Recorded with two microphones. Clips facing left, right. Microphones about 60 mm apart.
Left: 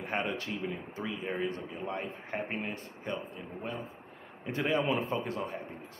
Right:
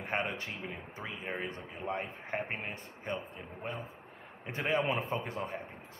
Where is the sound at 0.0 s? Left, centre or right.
Right.